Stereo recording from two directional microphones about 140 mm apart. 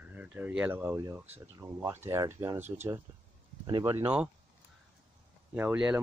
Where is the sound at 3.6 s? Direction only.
30° right (ahead or behind).